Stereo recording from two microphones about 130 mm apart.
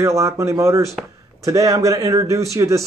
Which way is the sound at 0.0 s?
20° right (ahead or behind).